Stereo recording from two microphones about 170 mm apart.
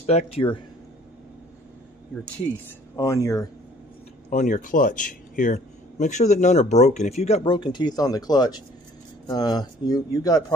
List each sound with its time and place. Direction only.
0.0 s speech: 40° left (ahead or behind)
3.0 s speech: 15° left (ahead or behind)
4.3 s speech: 50° left (ahead or behind); by 10.4 s 20° left (ahead or behind)